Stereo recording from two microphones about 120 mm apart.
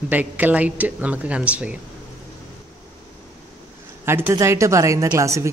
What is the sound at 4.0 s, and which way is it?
Speech, 20° right (ahead or behind).